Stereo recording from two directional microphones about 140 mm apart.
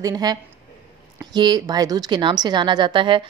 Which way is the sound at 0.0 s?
30° right (ahead or behind).